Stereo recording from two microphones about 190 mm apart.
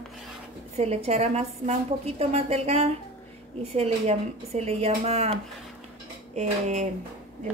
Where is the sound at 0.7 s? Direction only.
35° right (ahead or behind).